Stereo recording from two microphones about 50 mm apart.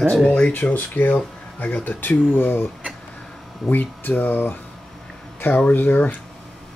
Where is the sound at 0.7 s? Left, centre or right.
Left.